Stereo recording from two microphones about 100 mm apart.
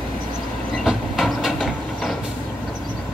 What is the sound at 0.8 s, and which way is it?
Train, centre (ahead or behind).